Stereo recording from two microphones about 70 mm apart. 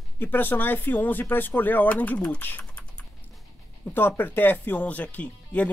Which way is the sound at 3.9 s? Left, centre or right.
Left.